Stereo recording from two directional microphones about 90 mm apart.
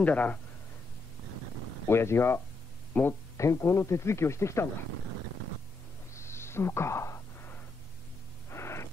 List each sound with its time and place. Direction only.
0.0 s speech: 15° left (ahead or behind)
1.9 s speech: 30° left (ahead or behind)
3.3 s speech: 35° left (ahead or behind)
6.1 s a sound: 30° left (ahead or behind)